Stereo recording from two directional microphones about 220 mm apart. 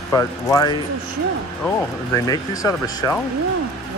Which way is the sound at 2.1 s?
15° left (ahead or behind).